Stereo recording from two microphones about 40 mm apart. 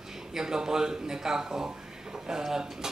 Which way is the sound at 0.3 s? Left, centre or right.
Centre.